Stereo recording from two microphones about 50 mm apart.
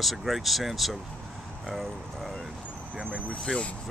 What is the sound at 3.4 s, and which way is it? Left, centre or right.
Speech, centre.